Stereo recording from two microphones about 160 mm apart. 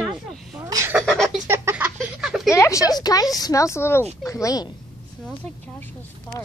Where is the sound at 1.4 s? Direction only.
10° right (ahead or behind).